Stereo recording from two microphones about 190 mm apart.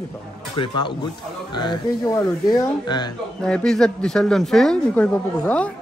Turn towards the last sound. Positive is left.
turn(degrees=5)  # may be behind; listen again after turning